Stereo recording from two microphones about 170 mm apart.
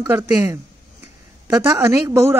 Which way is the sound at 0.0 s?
15° right (ahead or behind).